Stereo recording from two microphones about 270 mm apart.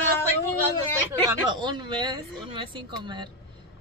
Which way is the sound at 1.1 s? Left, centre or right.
Centre.